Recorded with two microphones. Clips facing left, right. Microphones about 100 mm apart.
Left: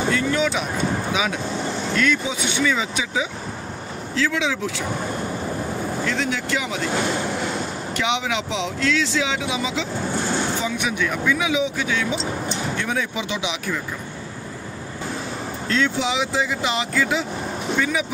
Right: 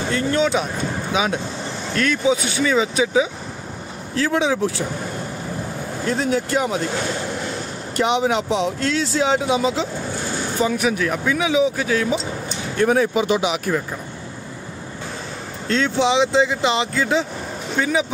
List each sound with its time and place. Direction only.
0.1 s speech: 35° right (ahead or behind)
4.1 s speech: 45° right (ahead or behind)
6.0 s speech: 40° right (ahead or behind)
7.9 s speech: 40° right (ahead or behind)
15.7 s speech: 30° right (ahead or behind)